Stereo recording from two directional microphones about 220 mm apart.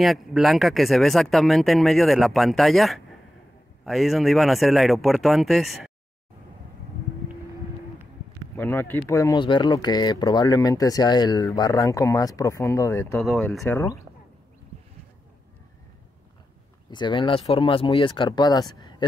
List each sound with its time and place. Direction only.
0.0 s speech: centre (ahead or behind)
8.5 s speech: 10° left (ahead or behind)
13.2 s speech: centre (ahead or behind)
13.6 s speech: 15° left (ahead or behind)
16.9 s speech: 20° left (ahead or behind)